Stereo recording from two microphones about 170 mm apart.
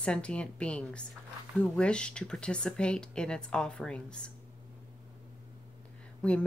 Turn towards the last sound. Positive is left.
turn(degrees=5)  # may be behind; listen again after turning